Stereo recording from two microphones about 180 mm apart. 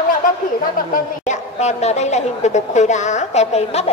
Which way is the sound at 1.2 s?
40° left (ahead or behind).